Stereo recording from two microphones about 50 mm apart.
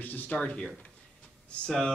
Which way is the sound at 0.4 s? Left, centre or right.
Left.